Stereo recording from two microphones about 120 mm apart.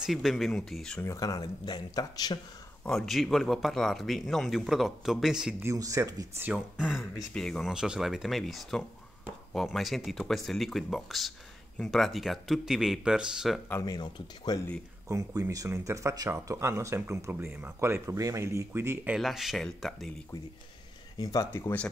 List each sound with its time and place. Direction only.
0.0 s speech: centre (ahead or behind)
1.0 s speech: 30° left (ahead or behind)
2.8 s speech: 5° left (ahead or behind)
5.6 s speech: 25° right (ahead or behind)
6.4 s speech: 10° right (ahead or behind)
13.7 s speech: 25° left (ahead or behind)
13.9 s speech: 35° left (ahead or behind)
15.0 s speech: 25° right (ahead or behind)
19.1 s speech: centre (ahead or behind)
21.2 s speech: 30° left (ahead or behind)
21.5 s speech: 20° left (ahead or behind)